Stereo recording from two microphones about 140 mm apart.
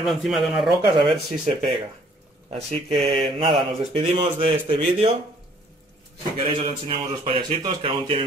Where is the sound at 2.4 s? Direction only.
45° right (ahead or behind).